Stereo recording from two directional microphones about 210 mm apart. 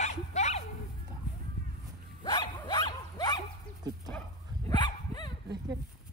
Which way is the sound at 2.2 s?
20° left (ahead or behind).